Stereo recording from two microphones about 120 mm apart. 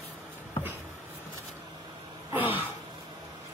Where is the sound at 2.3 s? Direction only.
15° right (ahead or behind).